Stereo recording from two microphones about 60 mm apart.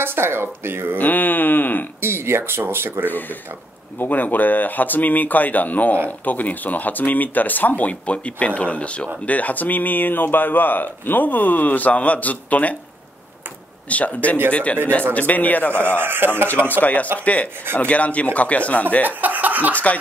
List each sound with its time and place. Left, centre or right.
0.0 s speech: right
0.9 s a sound: left
2.0 s speech: right
4.0 s speech: left
13.8 s speech: left
16.0 s speech: right
16.4 s speech: left
19.0 s speech: right
19.7 s snicker: left